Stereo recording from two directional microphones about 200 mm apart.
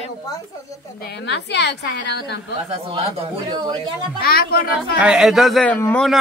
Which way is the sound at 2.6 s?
30° right (ahead or behind).